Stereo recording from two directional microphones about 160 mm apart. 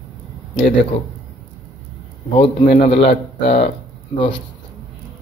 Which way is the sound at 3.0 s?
35° left (ahead or behind).